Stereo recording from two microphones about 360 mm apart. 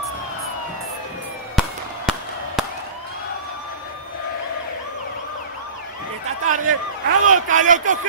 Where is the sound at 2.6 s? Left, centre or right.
Centre.